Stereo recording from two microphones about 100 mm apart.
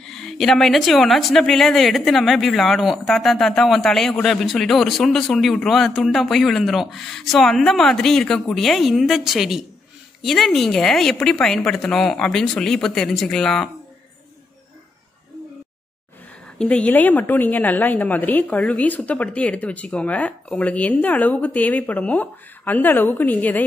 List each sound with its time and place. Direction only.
0.0 s a woman's voice: 5° left (ahead or behind)
16.4 s a woman's voice: 10° left (ahead or behind)